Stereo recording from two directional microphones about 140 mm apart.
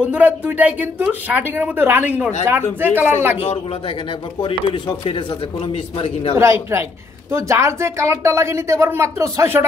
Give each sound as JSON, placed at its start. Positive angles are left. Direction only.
{"t": 0.0, "sound": "speech", "side_deg": -10}
{"t": 4.4, "sound": "speech", "side_deg": 35}
{"t": 5.7, "sound": "a man's voice", "side_deg": 45}
{"t": 6.3, "sound": "speech", "side_deg": -20}